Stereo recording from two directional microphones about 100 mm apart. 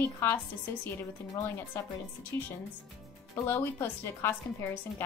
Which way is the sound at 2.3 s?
25° left (ahead or behind).